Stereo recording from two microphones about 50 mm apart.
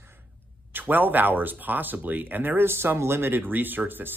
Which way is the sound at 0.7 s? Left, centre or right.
Right.